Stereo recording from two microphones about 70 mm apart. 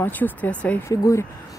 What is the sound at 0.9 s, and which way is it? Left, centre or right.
Speech, left.